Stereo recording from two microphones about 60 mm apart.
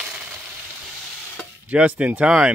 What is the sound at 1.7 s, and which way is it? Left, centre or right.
Speech, right.